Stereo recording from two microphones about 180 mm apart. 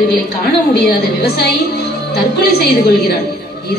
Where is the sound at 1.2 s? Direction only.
60° left (ahead or behind).